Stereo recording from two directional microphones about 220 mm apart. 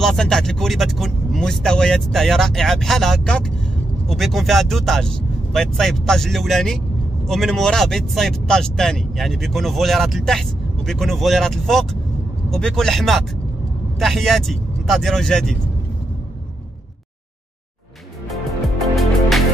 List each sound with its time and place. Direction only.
0.0 s speech: centre (ahead or behind)
18.3 s music: centre (ahead or behind)